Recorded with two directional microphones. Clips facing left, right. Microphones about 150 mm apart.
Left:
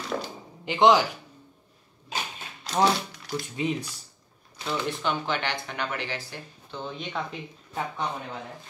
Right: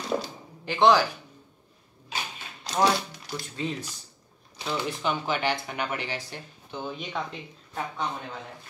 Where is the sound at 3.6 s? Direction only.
15° left (ahead or behind).